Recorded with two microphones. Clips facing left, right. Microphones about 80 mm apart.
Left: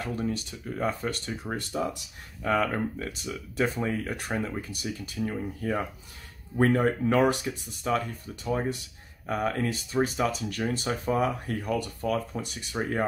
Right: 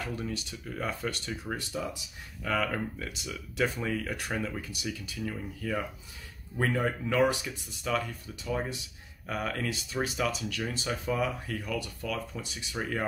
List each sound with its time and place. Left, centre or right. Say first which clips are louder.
0.0 s speech: left 5 dB; left
1.6 s speech: left 5 dB; left
7.8 s speech: left 3 dB; left